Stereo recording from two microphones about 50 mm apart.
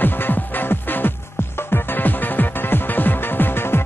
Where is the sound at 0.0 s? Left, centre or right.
Left.